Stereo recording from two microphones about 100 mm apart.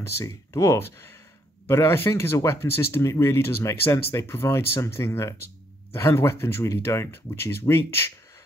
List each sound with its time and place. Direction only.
0.2 s speech: 30° left (ahead or behind)